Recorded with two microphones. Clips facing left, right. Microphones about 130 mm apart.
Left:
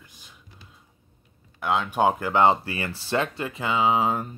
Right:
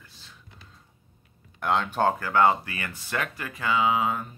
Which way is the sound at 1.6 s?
5° left (ahead or behind).